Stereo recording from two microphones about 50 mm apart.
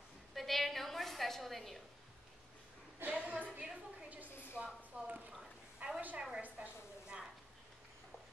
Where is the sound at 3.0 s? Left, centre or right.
Right.